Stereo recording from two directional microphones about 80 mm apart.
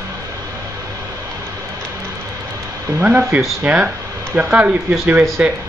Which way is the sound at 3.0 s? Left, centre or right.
Centre.